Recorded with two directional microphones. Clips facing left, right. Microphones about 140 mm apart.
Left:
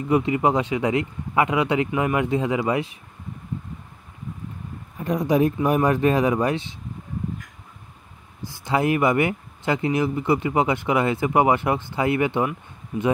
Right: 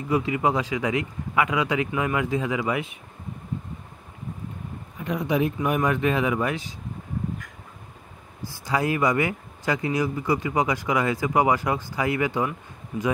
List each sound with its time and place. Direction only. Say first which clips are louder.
0.1 s speech: left 3 dB; 35° left (ahead or behind)
5.0 s speech: left 4 dB; 40° left (ahead or behind)
8.6 s speech: left 3 dB; 25° left (ahead or behind)